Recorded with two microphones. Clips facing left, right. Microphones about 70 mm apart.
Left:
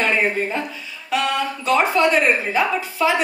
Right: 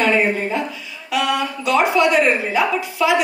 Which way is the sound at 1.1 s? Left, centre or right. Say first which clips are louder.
Right 1 dB; left.